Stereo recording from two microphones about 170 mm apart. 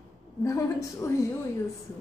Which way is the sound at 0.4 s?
15° left (ahead or behind).